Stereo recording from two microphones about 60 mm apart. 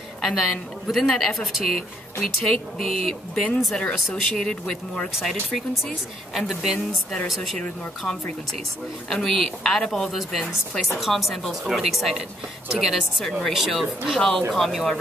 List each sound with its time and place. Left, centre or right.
0.2 s speech: centre
2.8 s speech: centre
3.7 s a woman's voice: centre
9.1 s a woman's voice: centre